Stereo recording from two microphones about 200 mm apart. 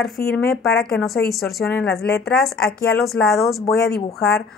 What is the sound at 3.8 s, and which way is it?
Speech, 50° left (ahead or behind).